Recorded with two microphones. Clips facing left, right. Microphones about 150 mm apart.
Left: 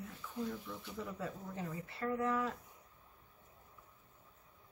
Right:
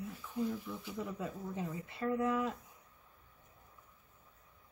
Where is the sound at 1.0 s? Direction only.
15° right (ahead or behind).